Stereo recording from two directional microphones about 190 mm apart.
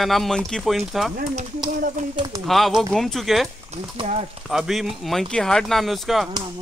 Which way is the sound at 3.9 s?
30° right (ahead or behind).